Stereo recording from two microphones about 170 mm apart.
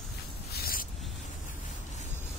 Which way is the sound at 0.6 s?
60° left (ahead or behind).